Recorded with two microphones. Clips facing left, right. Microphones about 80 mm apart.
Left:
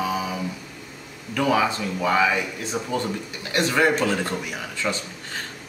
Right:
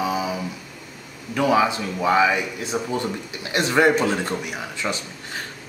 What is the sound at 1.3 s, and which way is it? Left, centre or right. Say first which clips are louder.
Speech: right 2 dB; centre.